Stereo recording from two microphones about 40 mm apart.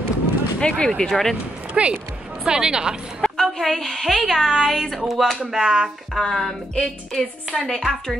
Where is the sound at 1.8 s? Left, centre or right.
Right.